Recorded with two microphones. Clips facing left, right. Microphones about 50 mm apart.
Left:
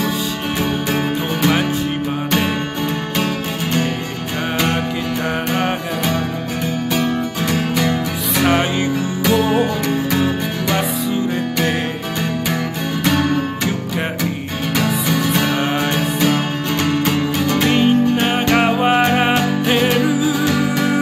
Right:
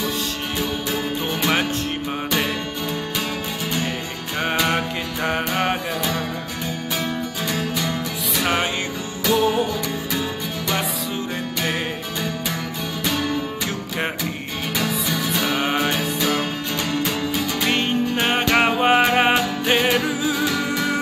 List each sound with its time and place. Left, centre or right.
4.6 s music: centre
6.9 s music: left
9.3 s music: left
13.1 s music: left
14.8 s music: left
15.5 s music: centre
17.6 s music: centre
20.0 s music: centre